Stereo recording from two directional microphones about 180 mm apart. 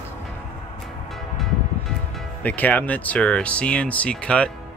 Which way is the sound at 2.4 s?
10° left (ahead or behind).